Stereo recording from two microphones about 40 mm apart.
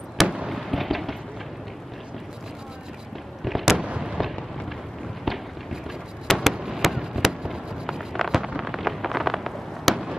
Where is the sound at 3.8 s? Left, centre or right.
Right.